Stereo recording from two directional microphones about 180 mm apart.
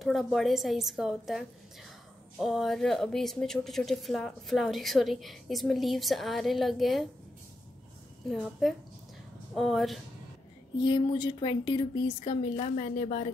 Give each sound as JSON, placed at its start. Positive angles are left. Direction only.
{"t": 0.0, "sound": "speech", "side_deg": 0}
{"t": 8.3, "sound": "speech", "side_deg": 0}
{"t": 10.8, "sound": "a woman's voice", "side_deg": 25}